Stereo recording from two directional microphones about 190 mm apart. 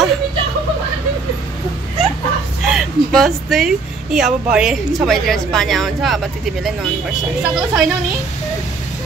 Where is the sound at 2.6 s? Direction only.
Centre (ahead or behind).